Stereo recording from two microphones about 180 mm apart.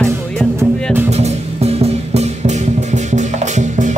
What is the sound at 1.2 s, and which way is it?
Music, 35° right (ahead or behind).